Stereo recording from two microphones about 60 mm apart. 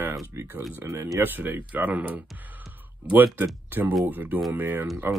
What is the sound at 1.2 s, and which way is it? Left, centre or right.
Speech, right.